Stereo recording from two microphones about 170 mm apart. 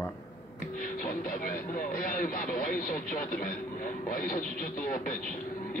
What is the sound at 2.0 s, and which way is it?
Speech, 55° left (ahead or behind).